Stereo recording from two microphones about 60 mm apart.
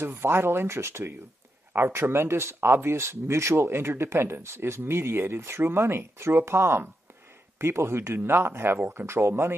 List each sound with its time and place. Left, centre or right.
0.0 s speech: right